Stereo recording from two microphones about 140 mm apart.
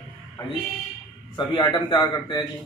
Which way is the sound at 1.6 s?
30° left (ahead or behind).